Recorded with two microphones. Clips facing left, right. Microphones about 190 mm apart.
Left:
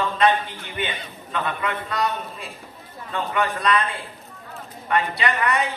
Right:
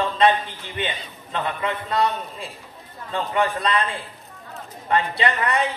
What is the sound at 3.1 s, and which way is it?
Speech, 30° right (ahead or behind).